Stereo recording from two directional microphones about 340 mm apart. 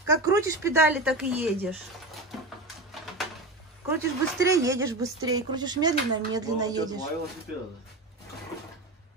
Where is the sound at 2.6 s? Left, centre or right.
Centre.